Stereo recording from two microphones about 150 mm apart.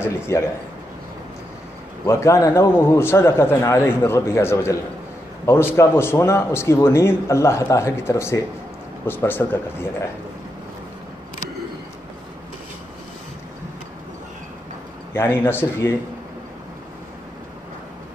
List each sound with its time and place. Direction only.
0.0 s a man's voice: 15° left (ahead or behind)
2.0 s a man's voice: 20° left (ahead or behind)
5.8 s a man's voice: 20° left (ahead or behind)
15.1 s a man's voice: 15° left (ahead or behind)